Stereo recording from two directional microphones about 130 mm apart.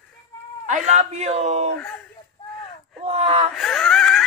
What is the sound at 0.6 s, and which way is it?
Speech, 70° right (ahead or behind).